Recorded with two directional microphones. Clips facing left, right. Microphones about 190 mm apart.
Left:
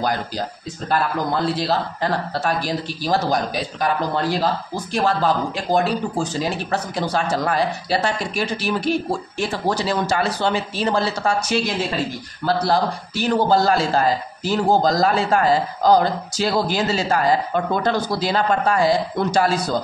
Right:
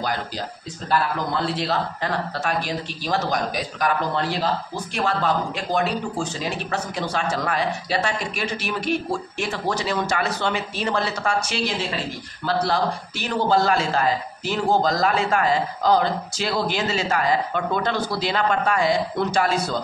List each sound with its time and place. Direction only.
1.7 s a man's voice: 35° left (ahead or behind)